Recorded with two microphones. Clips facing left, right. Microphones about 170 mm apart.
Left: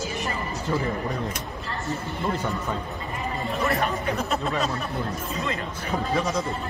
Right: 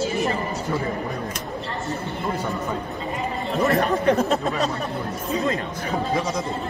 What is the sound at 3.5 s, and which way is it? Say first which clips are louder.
Speech: right 6 dB; 40° right (ahead or behind).